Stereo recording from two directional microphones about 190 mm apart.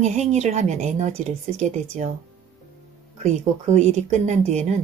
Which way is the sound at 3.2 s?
40° right (ahead or behind).